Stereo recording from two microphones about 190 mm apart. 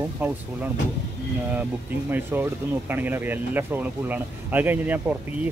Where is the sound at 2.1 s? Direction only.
10° right (ahead or behind).